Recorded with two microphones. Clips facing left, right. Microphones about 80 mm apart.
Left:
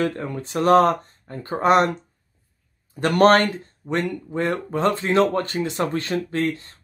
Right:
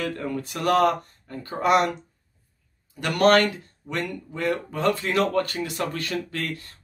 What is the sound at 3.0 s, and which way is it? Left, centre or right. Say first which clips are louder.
Speech: left 3 dB; left.